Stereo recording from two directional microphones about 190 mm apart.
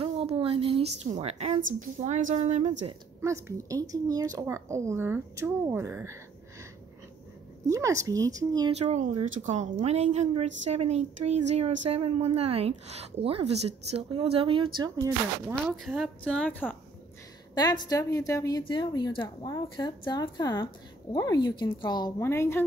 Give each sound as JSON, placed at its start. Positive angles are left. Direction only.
{"t": 0.0, "sound": "a sound", "side_deg": -30}
{"t": 1.7, "sound": "a woman's voice", "side_deg": -40}
{"t": 3.2, "sound": "speech", "side_deg": -15}
{"t": 7.7, "sound": "speech", "side_deg": -15}
{"t": 8.7, "sound": "a woman's voice", "side_deg": -35}
{"t": 15.7, "sound": "speech", "side_deg": 0}
{"t": 17.6, "sound": "a woman's voice", "side_deg": 20}